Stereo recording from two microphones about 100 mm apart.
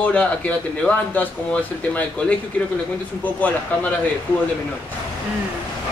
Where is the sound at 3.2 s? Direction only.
15° left (ahead or behind).